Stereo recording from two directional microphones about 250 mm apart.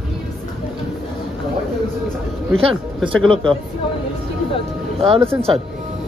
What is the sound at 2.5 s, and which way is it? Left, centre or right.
Speech, right.